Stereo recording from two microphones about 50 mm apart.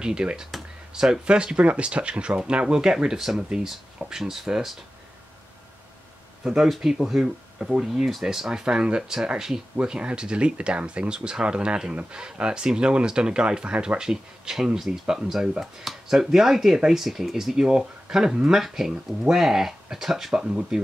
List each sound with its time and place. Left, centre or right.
0.0 s speech: centre
6.4 s speech: centre